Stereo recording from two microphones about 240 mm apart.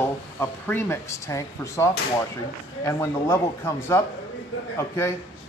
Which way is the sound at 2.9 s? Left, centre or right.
Centre.